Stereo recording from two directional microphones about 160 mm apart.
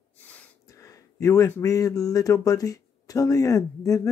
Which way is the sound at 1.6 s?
20° left (ahead or behind).